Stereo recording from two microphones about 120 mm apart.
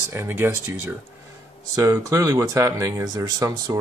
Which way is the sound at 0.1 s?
20° right (ahead or behind).